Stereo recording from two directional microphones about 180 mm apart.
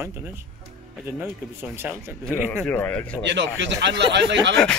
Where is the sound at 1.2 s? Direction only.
15° right (ahead or behind).